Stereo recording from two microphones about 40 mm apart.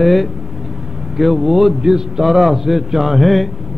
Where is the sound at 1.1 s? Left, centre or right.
Centre.